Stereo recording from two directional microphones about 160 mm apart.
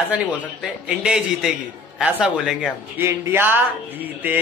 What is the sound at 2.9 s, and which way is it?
Speech, 15° right (ahead or behind).